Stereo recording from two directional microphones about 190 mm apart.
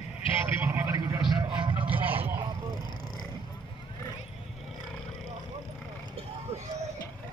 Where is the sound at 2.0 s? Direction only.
10° right (ahead or behind).